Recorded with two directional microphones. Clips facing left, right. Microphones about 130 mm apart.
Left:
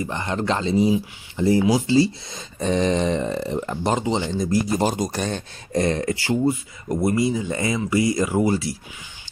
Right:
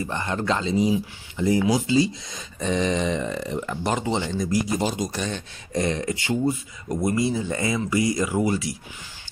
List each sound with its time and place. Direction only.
0.0 s speech: 20° left (ahead or behind)
4.7 s speech: 45° left (ahead or behind)